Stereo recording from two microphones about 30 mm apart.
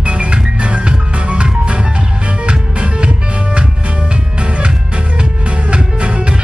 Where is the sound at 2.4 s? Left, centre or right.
Right.